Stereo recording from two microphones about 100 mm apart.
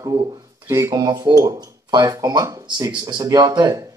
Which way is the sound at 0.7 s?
35° right (ahead or behind).